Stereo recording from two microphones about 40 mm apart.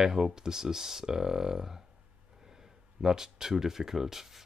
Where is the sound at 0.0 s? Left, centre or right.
Centre.